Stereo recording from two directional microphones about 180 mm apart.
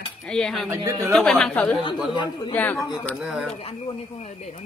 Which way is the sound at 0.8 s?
20° right (ahead or behind).